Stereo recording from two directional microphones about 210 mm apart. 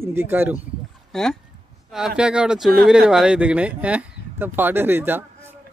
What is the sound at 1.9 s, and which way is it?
Speech, centre (ahead or behind).